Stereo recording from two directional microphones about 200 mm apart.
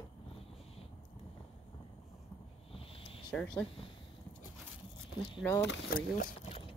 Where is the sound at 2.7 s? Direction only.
30° left (ahead or behind).